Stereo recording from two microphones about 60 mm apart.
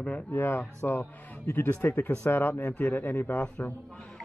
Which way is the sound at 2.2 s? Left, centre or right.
Left.